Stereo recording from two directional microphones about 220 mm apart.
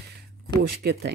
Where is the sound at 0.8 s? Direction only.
45° right (ahead or behind).